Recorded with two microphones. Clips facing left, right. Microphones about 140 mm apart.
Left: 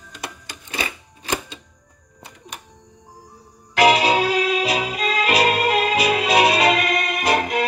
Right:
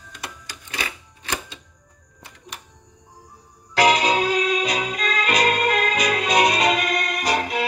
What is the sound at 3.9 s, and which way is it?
Music, 10° left (ahead or behind).